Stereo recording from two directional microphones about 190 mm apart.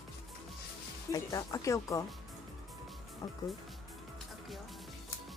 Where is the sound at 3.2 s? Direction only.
20° left (ahead or behind).